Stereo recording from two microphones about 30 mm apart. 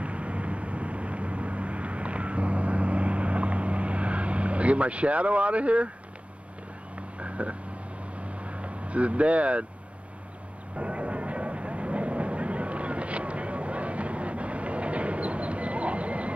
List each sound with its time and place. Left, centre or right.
0.0 s vehicle: right
7.0 s vehicle: right
10.8 s vehicle: right